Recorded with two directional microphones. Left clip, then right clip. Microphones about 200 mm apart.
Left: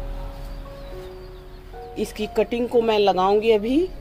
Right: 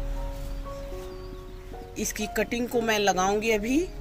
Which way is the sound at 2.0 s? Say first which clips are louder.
Left 6 dB; centre (ahead or behind).